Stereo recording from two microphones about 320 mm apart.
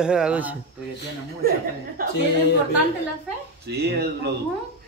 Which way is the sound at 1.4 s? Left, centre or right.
Right.